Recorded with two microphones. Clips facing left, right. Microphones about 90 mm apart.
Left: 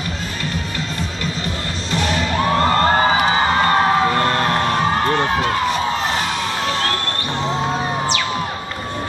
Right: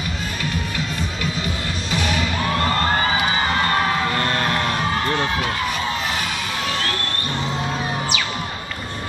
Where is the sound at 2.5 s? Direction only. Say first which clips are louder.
Left 5 dB; 40° left (ahead or behind).